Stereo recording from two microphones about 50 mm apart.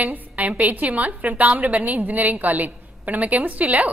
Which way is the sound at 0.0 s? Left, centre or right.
Right.